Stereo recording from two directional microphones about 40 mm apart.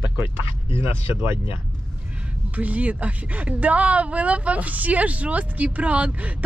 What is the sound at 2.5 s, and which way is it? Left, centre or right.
Speech, right.